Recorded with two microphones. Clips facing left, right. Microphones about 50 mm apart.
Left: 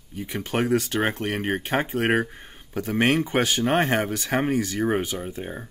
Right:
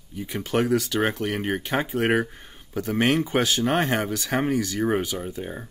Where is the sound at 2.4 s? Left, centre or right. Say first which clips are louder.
Right 1 dB; left.